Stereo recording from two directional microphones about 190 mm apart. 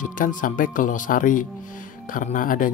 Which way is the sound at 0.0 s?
45° left (ahead or behind).